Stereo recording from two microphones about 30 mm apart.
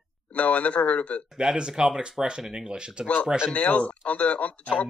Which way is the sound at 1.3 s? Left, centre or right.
Right.